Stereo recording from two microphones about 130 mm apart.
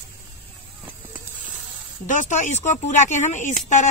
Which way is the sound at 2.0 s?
70° left (ahead or behind).